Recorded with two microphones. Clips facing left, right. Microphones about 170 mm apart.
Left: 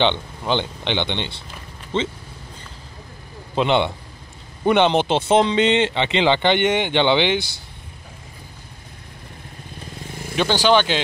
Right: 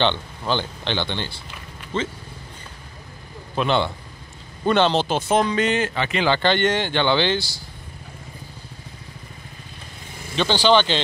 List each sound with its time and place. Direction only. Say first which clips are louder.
0.0 s speech: left 2 dB; 20° left (ahead or behind)
3.5 s speech: left 2 dB; 20° left (ahead or behind)
10.3 s speech: left 1 dB; 10° left (ahead or behind)